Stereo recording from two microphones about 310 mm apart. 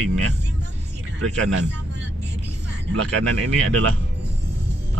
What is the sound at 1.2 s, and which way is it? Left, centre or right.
Speech, right.